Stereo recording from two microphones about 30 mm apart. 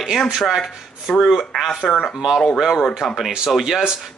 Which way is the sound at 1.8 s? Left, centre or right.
Left.